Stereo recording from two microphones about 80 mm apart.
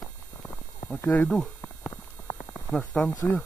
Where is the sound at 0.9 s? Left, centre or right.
Left.